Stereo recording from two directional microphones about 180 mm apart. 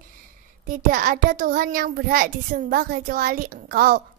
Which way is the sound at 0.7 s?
50° right (ahead or behind).